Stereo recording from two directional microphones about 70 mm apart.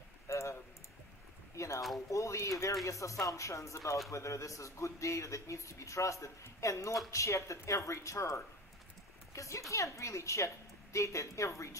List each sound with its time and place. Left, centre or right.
0.3 s typing: left
1.6 s a sound: left
2.0 s speech: left